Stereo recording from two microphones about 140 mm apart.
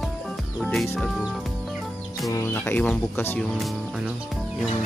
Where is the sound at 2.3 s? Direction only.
20° left (ahead or behind).